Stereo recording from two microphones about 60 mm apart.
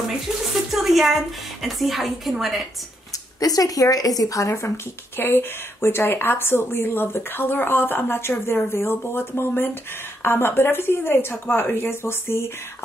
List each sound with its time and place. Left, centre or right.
0.7 s a sound: centre
1.6 s a woman's voice: centre
3.3 s speech: left
5.2 s a woman's voice: left